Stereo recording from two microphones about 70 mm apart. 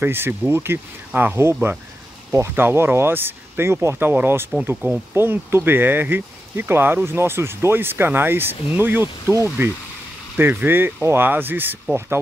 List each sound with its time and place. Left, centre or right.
0.0 s speech: right